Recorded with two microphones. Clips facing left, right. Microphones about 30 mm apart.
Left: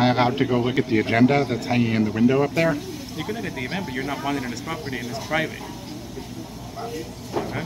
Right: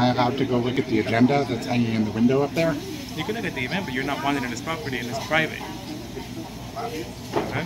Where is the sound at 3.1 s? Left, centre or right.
Centre.